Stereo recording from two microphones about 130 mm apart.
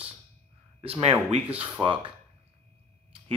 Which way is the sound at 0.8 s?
45° right (ahead or behind).